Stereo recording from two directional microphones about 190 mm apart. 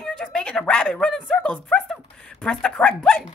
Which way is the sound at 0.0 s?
5° left (ahead or behind).